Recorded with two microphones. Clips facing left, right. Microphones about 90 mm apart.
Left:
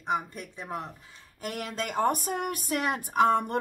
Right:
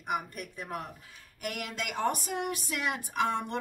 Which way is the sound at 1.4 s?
35° left (ahead or behind).